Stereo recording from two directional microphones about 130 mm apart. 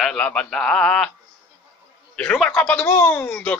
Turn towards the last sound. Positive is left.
turn(degrees=10)  # may be behind; listen again after turning